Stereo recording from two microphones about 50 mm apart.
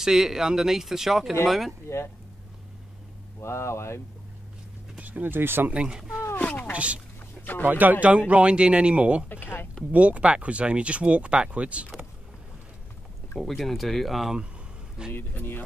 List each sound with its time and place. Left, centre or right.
0.0 s speech: centre
1.9 s speech: left
3.3 s speech: left
4.9 s a sound: right
5.3 s speech: right
5.7 s speech: centre
6.7 s speech: right
7.6 s speech: right
8.3 s speech: right
9.3 s speech: left
9.9 s speech: right
13.4 s speech: centre
15.1 s speech: left